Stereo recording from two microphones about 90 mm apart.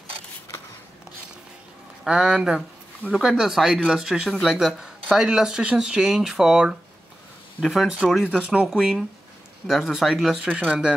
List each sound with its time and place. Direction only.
2.0 s speech: 10° right (ahead or behind)